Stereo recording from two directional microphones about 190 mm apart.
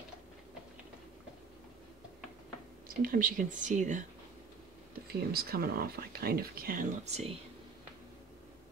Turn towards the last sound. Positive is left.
turn(degrees=-35)  # may be behind; listen again after turning